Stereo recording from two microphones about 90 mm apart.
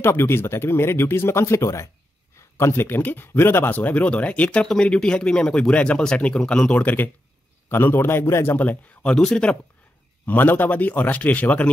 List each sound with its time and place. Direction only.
0.0 s speech: 25° left (ahead or behind)
9.1 s speech: 10° left (ahead or behind)
10.2 s speech: 20° left (ahead or behind)